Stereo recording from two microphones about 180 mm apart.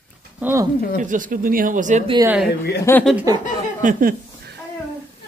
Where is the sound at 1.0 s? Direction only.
45° right (ahead or behind).